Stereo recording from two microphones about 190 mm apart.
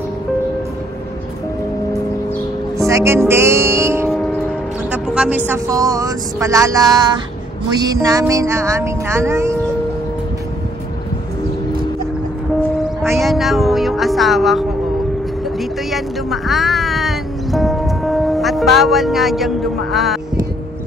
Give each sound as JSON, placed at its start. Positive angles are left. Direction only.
{"t": 2.9, "sound": "music", "side_deg": -15}
{"t": 5.5, "sound": "speech", "side_deg": -15}
{"t": 13.2, "sound": "music", "side_deg": 0}
{"t": 15.9, "sound": "music", "side_deg": 0}